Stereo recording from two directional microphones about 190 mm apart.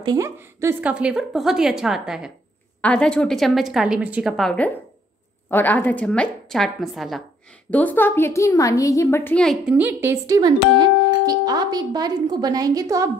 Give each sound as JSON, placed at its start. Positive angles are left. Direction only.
{"t": 0.0, "sound": "a woman's voice", "side_deg": -20}
{"t": 9.8, "sound": "speech", "side_deg": -10}